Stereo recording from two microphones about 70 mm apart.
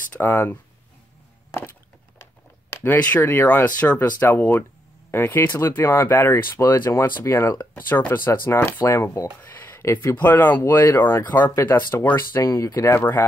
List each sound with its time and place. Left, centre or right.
0.1 s speech: left
2.8 s speech: left
8.8 s speech: left
9.6 s a sound: left
10.1 s speech: left
12.4 s speech: left